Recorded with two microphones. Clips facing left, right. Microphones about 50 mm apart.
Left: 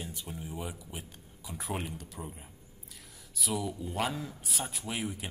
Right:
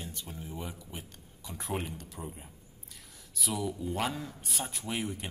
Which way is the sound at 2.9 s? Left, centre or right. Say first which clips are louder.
Even; centre.